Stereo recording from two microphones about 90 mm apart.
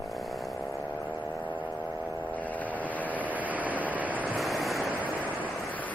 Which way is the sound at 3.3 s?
20° right (ahead or behind).